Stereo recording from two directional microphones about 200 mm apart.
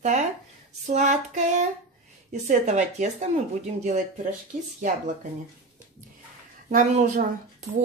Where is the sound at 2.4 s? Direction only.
35° right (ahead or behind).